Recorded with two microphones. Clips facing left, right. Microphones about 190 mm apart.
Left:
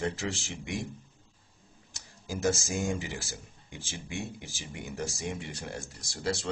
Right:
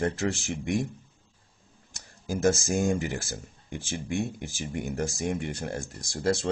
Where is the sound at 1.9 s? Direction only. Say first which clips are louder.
Right 6 dB; 50° right (ahead or behind).